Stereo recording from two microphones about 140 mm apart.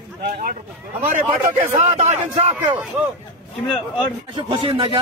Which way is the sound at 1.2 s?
45° right (ahead or behind).